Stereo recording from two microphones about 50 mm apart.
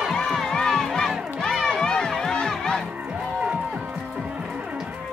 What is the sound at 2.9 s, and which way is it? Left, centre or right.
Speech, right.